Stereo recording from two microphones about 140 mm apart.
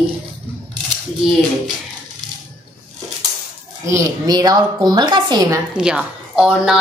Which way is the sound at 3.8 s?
20° right (ahead or behind).